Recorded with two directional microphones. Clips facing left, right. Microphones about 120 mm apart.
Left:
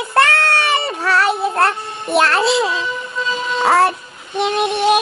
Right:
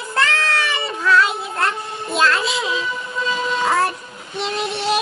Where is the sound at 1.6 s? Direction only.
70° left (ahead or behind).